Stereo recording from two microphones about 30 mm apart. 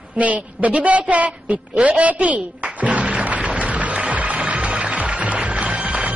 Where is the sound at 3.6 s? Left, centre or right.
Right.